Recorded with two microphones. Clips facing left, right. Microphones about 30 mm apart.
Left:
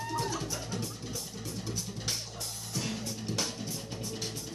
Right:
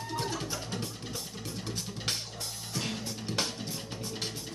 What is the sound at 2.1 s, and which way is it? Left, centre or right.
Music, right.